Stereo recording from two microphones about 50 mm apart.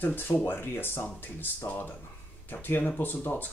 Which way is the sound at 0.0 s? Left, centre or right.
Left.